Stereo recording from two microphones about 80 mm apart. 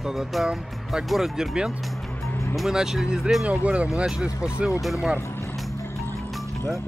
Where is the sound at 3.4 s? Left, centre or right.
Centre.